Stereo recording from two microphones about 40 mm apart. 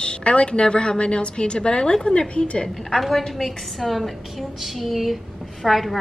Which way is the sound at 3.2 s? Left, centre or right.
Centre.